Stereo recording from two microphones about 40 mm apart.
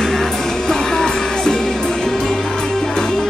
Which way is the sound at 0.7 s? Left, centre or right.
Centre.